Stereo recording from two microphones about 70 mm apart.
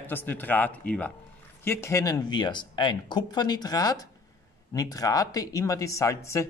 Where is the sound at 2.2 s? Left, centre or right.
Left.